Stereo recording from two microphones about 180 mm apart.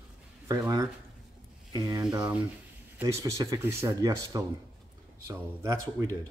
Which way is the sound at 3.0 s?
20° right (ahead or behind).